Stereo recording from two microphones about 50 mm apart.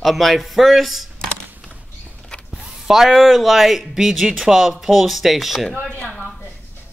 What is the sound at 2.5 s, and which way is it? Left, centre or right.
A man's voice, centre.